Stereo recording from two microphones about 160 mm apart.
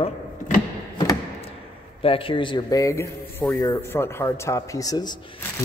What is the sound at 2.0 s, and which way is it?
A man's voice, 35° left (ahead or behind).